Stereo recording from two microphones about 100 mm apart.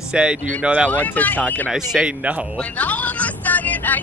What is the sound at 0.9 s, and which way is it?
Speech, 15° left (ahead or behind).